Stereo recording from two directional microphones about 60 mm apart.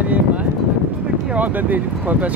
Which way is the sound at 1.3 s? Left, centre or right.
Right.